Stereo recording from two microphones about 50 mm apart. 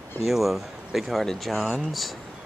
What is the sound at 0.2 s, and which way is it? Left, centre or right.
Speech, centre.